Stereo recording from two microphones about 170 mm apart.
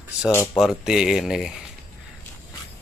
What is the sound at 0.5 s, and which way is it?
Speech, 5° right (ahead or behind).